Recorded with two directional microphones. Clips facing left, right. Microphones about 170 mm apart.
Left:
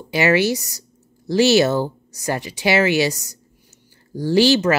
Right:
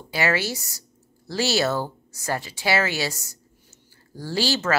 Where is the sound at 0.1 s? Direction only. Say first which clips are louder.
Left 7 dB; 20° left (ahead or behind).